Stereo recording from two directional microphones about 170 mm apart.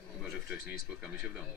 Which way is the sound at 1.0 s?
5° right (ahead or behind).